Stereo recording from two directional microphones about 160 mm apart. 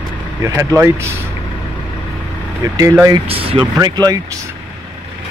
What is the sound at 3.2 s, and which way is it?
Speech, 35° right (ahead or behind).